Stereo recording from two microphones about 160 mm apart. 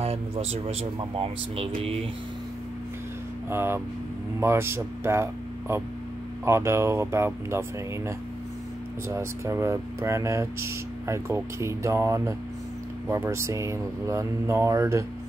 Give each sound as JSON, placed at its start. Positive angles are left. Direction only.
{"t": 0.0, "sound": "speech", "side_deg": -40}
{"t": 3.4, "sound": "speech", "side_deg": -15}
{"t": 9.1, "sound": "speech", "side_deg": -15}